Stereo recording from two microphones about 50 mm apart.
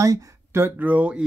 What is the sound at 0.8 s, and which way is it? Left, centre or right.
Speech, right.